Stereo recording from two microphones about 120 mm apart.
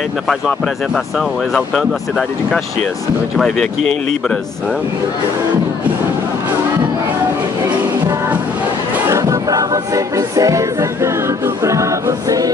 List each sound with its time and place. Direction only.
0.3 s speech: centre (ahead or behind)
9.1 s music: 25° right (ahead or behind)